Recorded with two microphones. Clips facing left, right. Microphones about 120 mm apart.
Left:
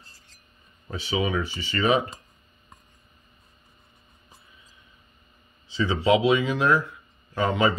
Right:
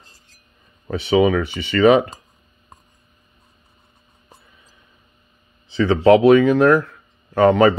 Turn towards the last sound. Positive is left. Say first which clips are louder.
# right 10 dB
turn(degrees=-70)  # may be behind; listen again after turning